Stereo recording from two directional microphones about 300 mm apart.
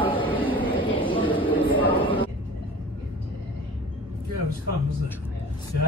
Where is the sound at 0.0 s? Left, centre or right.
Centre.